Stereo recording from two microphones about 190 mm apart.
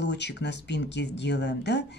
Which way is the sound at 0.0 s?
65° left (ahead or behind).